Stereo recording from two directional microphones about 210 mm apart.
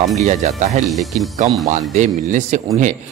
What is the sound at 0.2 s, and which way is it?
Speech, 35° right (ahead or behind).